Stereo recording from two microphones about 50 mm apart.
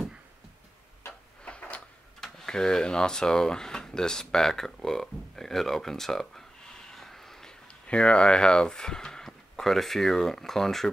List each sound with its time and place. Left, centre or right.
1.4 s a sound: left
2.1 s speech: centre
7.8 s speech: left; by 10.9 s centre